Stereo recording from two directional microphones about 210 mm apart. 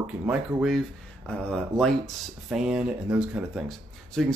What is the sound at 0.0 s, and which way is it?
Speech, 5° right (ahead or behind).